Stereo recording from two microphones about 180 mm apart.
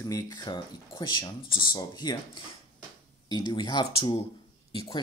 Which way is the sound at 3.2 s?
20° left (ahead or behind).